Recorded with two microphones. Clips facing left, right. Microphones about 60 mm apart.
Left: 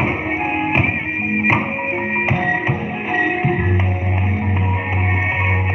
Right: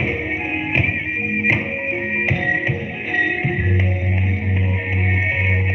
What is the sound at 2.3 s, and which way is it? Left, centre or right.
Music, left.